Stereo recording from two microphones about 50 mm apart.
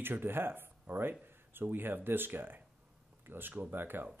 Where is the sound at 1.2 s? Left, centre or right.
Right.